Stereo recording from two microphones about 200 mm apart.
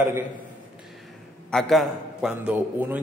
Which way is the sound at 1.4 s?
Centre (ahead or behind).